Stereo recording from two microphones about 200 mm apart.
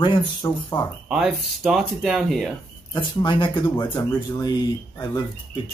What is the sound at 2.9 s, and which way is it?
Speech, 20° left (ahead or behind).